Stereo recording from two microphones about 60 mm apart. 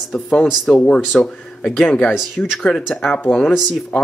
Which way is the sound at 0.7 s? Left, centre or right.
Centre.